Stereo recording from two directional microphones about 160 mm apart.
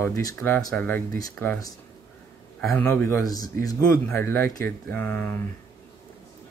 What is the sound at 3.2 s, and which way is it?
Speech, 25° left (ahead or behind).